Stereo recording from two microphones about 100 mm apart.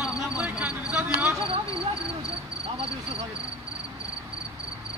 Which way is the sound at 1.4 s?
65° right (ahead or behind).